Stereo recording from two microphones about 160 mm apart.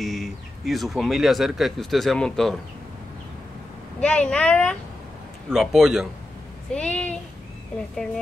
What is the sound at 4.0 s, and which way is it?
Speech, 5° left (ahead or behind).